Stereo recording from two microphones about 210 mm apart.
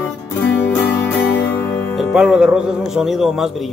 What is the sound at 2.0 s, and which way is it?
Speech, centre (ahead or behind).